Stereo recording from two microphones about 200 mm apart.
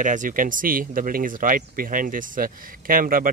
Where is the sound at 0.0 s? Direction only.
40° right (ahead or behind).